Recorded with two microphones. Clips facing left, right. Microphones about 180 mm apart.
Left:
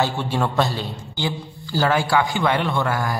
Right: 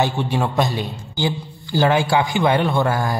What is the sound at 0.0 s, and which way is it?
A man's voice, 15° right (ahead or behind).